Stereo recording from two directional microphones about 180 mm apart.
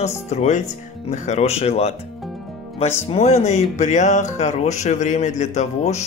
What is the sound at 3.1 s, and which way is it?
Speech, 35° left (ahead or behind).